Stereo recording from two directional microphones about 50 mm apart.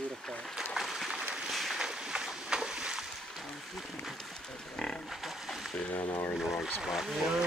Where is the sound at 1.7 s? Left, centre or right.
Centre.